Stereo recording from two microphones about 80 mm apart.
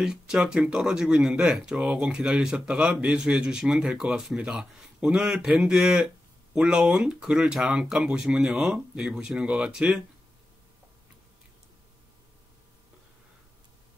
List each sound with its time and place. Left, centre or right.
0.0 s speech: centre